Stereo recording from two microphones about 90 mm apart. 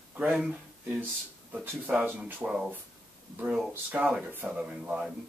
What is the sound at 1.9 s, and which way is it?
Speech, 10° right (ahead or behind).